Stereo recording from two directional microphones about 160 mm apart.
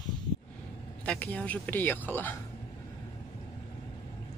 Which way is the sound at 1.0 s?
10° left (ahead or behind).